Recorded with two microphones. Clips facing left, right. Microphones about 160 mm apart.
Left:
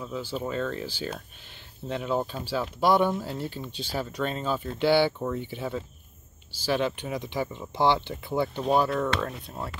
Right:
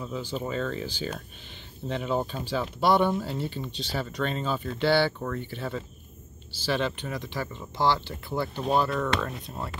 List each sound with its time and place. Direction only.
0.0 s speech: 5° left (ahead or behind)